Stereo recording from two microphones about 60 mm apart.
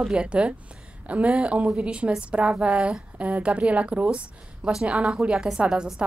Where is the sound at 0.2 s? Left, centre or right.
Centre.